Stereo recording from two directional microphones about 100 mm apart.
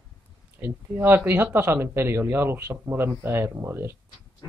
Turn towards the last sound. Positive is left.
turn(degrees=-25)  # may be behind; listen again after turning